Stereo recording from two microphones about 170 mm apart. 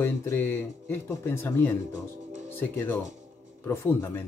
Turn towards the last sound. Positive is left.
turn(degrees=15)  # may be behind; listen again after turning